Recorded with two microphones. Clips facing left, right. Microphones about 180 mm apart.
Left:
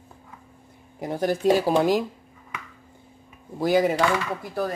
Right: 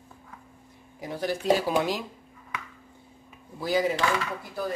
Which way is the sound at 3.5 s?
55° left (ahead or behind).